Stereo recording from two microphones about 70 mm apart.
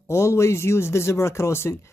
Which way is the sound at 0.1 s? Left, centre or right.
Left.